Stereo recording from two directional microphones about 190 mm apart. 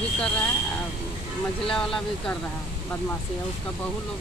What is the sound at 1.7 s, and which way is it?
Speech, 5° left (ahead or behind).